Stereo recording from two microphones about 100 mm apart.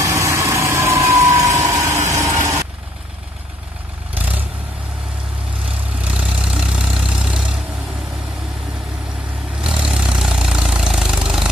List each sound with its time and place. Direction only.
0.0 s vehicle: 30° right (ahead or behind)
5.9 s vehicle: 10° right (ahead or behind)
9.6 s vehicle: 10° right (ahead or behind)